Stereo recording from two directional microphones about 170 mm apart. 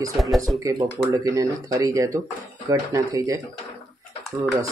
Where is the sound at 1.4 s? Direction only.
20° right (ahead or behind).